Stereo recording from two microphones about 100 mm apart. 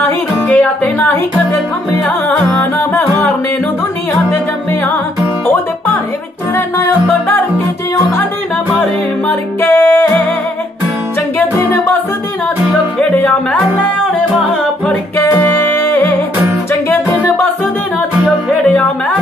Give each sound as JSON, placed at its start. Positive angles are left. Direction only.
{"t": 0.0, "sound": "music", "side_deg": 15}
{"t": 2.6, "sound": "music", "side_deg": 20}
{"t": 6.5, "sound": "music", "side_deg": 20}
{"t": 9.3, "sound": "music", "side_deg": 20}
{"t": 13.1, "sound": "music", "side_deg": 10}
{"t": 15.2, "sound": "music", "side_deg": 20}
{"t": 18.6, "sound": "music", "side_deg": 5}